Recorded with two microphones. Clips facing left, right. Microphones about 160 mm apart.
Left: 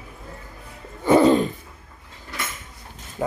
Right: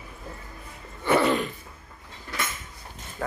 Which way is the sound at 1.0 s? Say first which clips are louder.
Left 7 dB; 25° left (ahead or behind).